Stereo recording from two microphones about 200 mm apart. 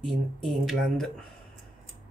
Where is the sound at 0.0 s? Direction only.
Centre (ahead or behind).